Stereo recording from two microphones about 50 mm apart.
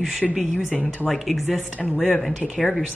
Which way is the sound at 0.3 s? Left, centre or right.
Centre.